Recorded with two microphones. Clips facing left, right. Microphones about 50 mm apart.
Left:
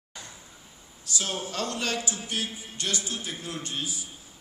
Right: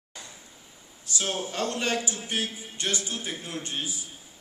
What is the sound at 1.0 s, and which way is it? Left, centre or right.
A man's voice, right.